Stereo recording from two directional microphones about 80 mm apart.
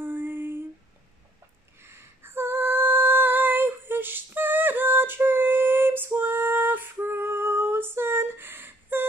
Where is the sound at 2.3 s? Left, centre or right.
Right.